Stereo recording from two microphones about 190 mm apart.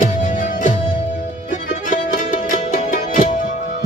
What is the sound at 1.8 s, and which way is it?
Music, 45° left (ahead or behind).